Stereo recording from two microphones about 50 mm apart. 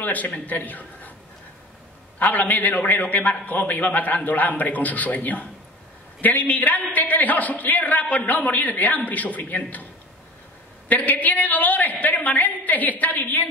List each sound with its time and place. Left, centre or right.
0.0 s a man's voice: left
2.1 s a man's voice: left
10.9 s a man's voice: left